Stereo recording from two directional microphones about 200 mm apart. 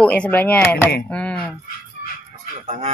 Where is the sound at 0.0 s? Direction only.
5° left (ahead or behind).